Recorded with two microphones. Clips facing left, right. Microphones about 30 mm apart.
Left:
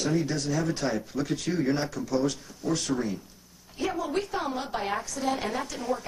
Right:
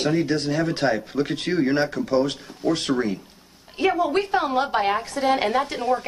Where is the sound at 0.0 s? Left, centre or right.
Right.